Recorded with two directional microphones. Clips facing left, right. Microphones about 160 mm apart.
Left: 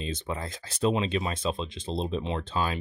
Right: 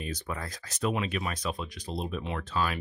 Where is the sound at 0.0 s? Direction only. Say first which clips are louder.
Left 3 dB; 25° left (ahead or behind).